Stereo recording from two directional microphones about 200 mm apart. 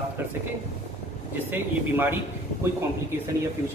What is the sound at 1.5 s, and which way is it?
Speech, 10° right (ahead or behind).